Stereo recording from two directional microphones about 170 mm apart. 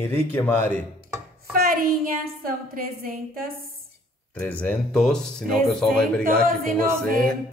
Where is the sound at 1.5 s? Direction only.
60° right (ahead or behind).